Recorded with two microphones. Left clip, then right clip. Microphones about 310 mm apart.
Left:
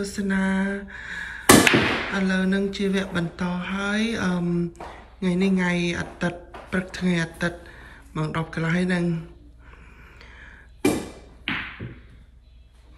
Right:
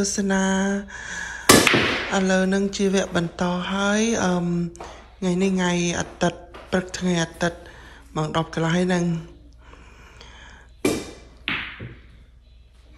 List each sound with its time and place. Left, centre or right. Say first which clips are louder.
0.0 s speech: right 4 dB; centre
2.1 s mantra: right 4 dB; centre
9.7 s a sound: right 2 dB; centre